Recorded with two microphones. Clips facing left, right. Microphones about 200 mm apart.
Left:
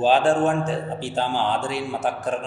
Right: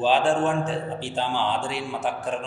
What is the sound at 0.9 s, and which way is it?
Mantra, 45° left (ahead or behind).